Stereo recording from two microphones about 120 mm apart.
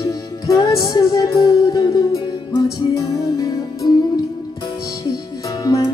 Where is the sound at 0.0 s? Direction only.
30° left (ahead or behind).